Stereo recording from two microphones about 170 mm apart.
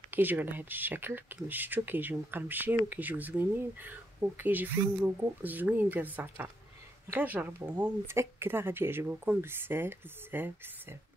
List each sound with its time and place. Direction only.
0.1 s speech: 10° right (ahead or behind)